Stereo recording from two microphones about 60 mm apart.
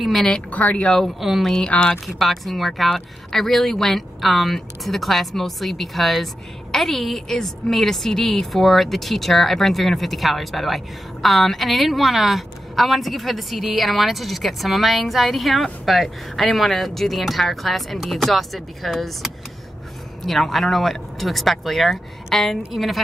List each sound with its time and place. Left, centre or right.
0.0 s a woman's voice: centre
0.5 s speech: left
0.9 s a woman's voice: centre